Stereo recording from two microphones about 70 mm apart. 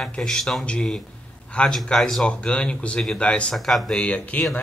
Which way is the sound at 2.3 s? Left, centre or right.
Centre.